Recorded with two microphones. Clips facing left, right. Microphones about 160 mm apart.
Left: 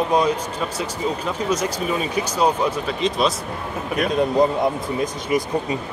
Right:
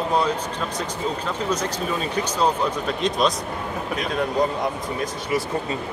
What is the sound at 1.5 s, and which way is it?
Speech, 10° left (ahead or behind).